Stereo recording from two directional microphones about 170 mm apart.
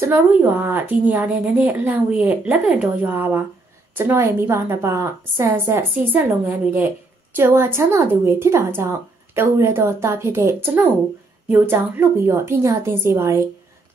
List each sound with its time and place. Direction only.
0.0 s a woman's voice: 10° right (ahead or behind)